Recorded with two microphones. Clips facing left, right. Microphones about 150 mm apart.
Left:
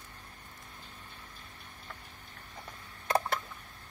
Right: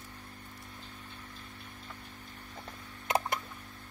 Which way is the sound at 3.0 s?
20° right (ahead or behind).